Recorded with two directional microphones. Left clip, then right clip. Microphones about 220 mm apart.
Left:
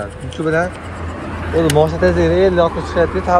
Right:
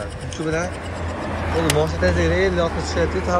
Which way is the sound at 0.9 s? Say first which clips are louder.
Even; 45° right (ahead or behind).